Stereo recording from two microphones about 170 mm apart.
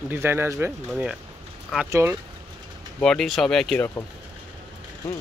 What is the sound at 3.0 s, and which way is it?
Speech, 5° left (ahead or behind).